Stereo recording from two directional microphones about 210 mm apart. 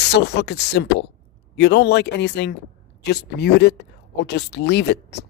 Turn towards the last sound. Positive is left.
turn(degrees=55)  # may be behind; listen again after turning